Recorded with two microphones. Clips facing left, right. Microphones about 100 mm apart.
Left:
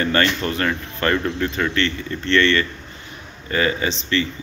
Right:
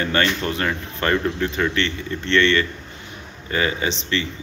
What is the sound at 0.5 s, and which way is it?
Speech, 15° right (ahead or behind).